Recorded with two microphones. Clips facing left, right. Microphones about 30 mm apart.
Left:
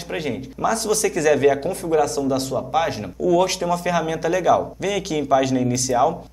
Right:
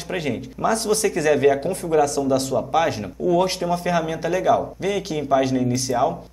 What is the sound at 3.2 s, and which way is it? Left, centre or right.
Speech, left.